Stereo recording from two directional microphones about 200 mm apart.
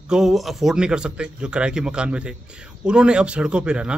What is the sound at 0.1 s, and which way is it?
A man's voice, centre (ahead or behind).